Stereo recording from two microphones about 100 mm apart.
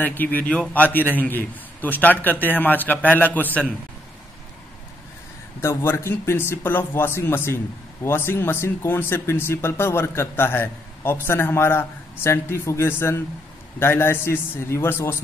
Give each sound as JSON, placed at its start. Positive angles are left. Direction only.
{"t": 0.0, "sound": "a man's voice", "side_deg": 20}
{"t": 5.6, "sound": "speech", "side_deg": 30}